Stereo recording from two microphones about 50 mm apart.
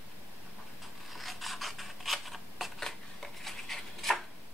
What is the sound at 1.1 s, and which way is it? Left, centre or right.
Scissors, centre.